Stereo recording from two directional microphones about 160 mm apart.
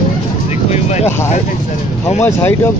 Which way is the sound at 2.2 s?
15° left (ahead or behind).